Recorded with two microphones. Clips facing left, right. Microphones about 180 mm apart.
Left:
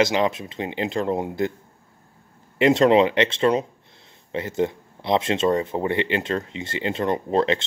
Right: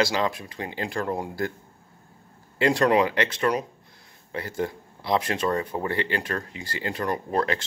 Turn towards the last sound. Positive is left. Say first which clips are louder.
# left 5 dB
turn(degrees=20)  # may be behind; listen again after turning